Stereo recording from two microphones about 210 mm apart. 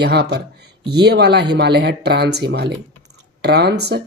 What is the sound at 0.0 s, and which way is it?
Speech, 50° right (ahead or behind).